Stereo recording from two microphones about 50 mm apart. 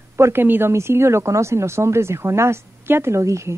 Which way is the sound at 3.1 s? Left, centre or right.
Right.